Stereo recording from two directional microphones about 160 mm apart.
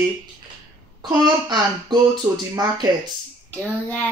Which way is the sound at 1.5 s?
25° right (ahead or behind).